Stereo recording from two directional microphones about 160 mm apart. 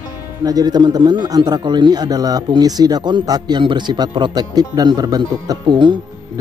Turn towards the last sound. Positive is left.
turn(degrees=-30)  # may be behind; listen again after turning